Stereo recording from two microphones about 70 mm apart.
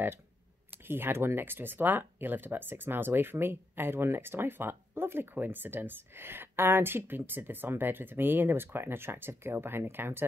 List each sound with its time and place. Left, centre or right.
0.8 s speech: right